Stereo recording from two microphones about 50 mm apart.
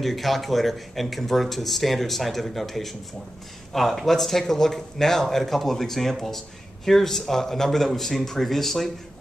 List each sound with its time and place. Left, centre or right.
0.0 s speech: centre